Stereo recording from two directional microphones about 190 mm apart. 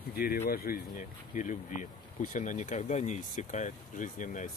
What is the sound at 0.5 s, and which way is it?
Speech, 50° left (ahead or behind).